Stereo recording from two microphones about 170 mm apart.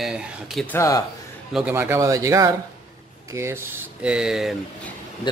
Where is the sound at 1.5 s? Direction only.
10° right (ahead or behind).